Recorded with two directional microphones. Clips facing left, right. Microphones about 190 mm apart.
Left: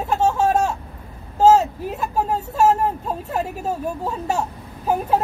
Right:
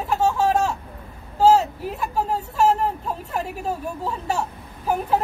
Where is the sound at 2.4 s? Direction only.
40° left (ahead or behind).